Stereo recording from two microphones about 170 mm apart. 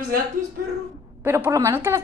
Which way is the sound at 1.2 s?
15° right (ahead or behind).